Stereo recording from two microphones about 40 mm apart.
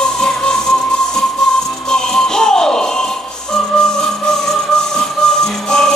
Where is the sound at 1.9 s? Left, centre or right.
Centre.